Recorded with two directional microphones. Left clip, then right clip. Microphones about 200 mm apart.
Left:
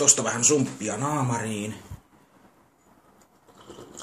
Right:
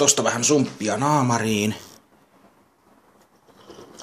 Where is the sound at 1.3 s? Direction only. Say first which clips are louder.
Right 8 dB; 45° right (ahead or behind).